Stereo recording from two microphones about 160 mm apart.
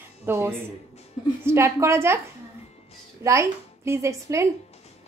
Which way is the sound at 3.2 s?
20° right (ahead or behind).